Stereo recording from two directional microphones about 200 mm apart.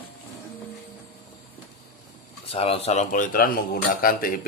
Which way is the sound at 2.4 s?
30° left (ahead or behind).